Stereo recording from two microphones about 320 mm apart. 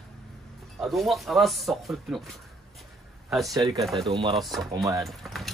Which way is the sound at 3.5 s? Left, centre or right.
Centre.